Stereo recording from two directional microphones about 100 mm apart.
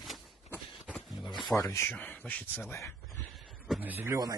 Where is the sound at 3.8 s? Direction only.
20° right (ahead or behind).